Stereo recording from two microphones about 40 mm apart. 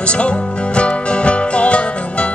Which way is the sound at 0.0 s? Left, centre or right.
Left.